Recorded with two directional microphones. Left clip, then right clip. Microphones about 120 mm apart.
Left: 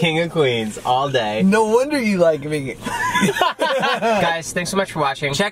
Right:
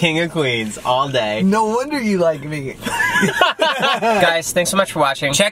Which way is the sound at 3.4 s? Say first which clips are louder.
Right 3 dB; 15° right (ahead or behind).